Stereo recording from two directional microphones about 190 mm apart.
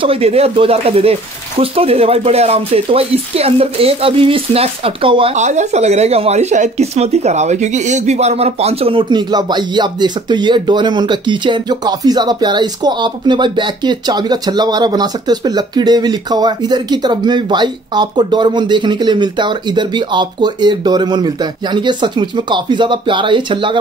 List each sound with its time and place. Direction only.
0.0 s speech: 30° right (ahead or behind)